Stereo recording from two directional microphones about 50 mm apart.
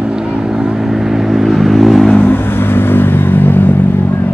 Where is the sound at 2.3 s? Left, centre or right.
Left.